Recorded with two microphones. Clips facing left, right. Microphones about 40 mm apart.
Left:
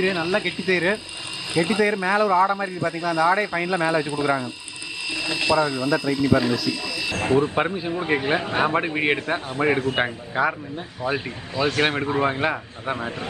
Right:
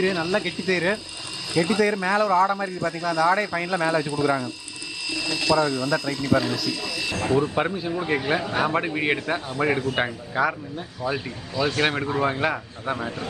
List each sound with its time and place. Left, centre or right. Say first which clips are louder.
0.0 s speech: left 1 dB; centre
7.2 s speech: left 2 dB; left
7.6 s speech: left 1 dB; centre; by 8.7 s left
8.7 s speech: left 2 dB; centre
11.0 s speech: left 2 dB; left